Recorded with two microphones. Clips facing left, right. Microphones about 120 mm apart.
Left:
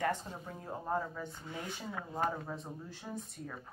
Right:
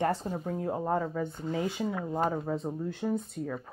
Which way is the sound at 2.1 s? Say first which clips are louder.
Right 4 dB; 35° right (ahead or behind).